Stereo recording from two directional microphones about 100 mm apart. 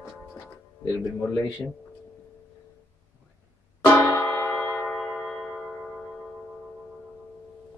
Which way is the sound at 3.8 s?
25° left (ahead or behind).